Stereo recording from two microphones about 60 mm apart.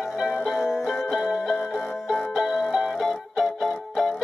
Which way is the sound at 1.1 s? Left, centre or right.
Centre.